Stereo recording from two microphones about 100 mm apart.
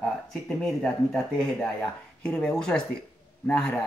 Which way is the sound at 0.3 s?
5° left (ahead or behind).